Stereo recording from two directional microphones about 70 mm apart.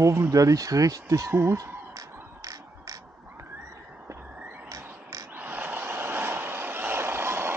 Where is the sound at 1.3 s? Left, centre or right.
Right.